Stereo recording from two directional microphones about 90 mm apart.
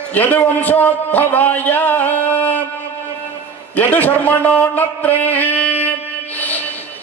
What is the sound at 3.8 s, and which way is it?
A man's voice, 20° left (ahead or behind).